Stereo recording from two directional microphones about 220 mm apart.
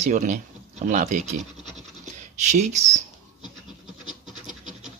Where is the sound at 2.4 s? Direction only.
35° right (ahead or behind).